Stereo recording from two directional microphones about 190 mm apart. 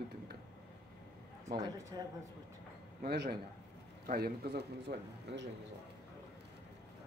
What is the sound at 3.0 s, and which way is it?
A man's voice, 55° right (ahead or behind).